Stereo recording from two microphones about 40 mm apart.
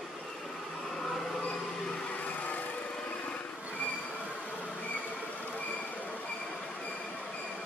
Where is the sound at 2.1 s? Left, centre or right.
Left.